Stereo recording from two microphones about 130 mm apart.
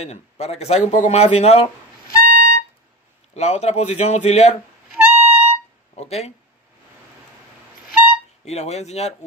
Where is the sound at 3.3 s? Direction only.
55° left (ahead or behind).